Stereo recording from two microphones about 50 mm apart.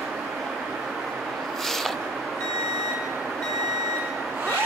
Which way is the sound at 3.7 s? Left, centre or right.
Centre.